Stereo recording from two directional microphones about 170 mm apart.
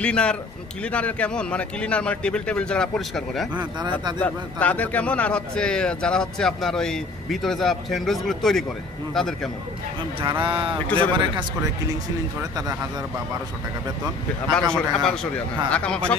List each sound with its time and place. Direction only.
0.0 s a man's voice: 5° left (ahead or behind)
10.4 s a man's voice: 30° right (ahead or behind)
14.7 s a man's voice: 5° left (ahead or behind)